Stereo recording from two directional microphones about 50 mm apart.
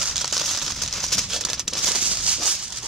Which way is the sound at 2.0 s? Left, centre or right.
Centre.